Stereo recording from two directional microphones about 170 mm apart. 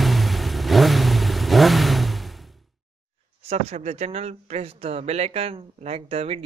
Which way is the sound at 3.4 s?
40° right (ahead or behind).